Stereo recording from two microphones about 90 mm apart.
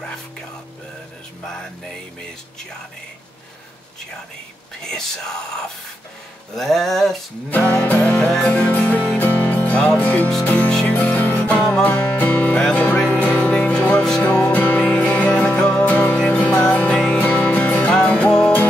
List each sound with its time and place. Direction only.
4.8 s speech: 5° left (ahead or behind)
6.5 s music: 5° left (ahead or behind)
7.5 s music: 20° left (ahead or behind)